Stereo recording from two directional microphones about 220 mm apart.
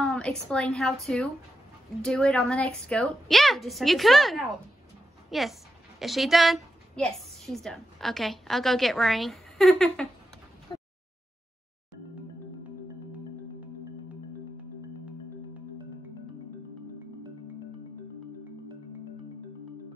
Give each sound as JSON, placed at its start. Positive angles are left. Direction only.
{"t": 0.0, "sound": "a woman's voice", "side_deg": 5}
{"t": 10.7, "sound": "a sound", "side_deg": 20}
{"t": 13.1, "sound": "music", "side_deg": -5}